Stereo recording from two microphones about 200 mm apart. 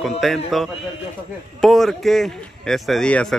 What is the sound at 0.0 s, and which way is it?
Speech, centre (ahead or behind).